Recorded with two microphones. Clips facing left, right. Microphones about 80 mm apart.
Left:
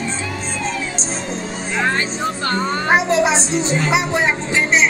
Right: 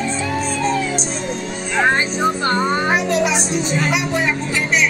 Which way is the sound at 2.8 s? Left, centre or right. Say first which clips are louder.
Left 2 dB; left.